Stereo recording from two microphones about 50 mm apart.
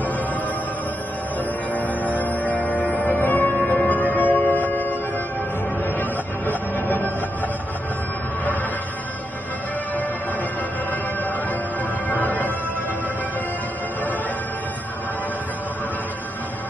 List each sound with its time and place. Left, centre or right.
1.7 s music: left
5.9 s music: left
12.1 s music: left